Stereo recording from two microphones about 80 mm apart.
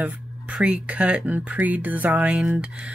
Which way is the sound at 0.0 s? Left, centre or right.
Centre.